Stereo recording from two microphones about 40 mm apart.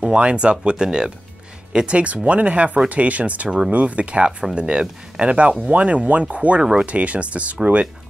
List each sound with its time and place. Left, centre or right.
0.2 s speech: right
3.4 s speech: centre
3.7 s speech: right
6.6 s speech: centre
6.9 s speech: right